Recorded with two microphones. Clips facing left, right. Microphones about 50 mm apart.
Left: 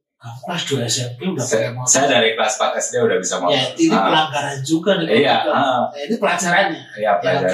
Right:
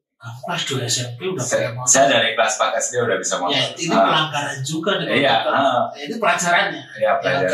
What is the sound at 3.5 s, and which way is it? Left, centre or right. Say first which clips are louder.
Speech: left 5 dB; left.